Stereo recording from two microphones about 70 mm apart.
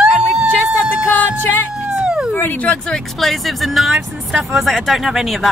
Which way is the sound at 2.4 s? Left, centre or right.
Left.